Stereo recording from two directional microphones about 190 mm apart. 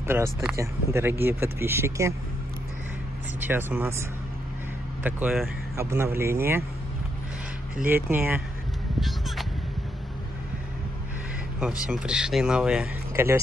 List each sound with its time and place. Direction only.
0.0 s speech: 10° right (ahead or behind)
3.3 s speech: 10° right (ahead or behind)
5.0 s speech: 5° right (ahead or behind)
7.9 s speech: 10° right (ahead or behind)
9.0 s a sound: centre (ahead or behind)
11.8 s speech: 5° right (ahead or behind)